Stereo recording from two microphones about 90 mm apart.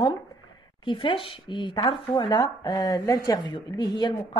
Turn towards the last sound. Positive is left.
turn(degrees=55)  # may be behind; listen again after turning